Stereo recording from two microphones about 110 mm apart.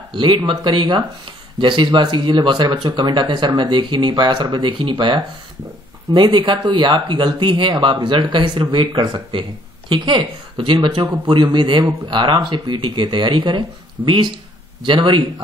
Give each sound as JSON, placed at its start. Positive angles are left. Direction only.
{"t": 0.1, "sound": "speech", "side_deg": -45}